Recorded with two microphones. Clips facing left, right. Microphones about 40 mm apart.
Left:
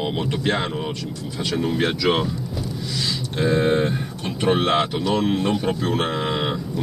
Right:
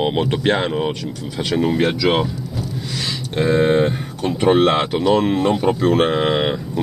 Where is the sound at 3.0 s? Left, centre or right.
Right.